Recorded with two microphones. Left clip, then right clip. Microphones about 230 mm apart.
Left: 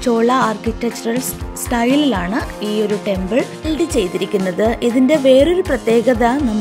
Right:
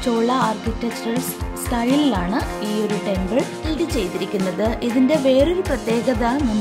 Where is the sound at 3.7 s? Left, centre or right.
Centre.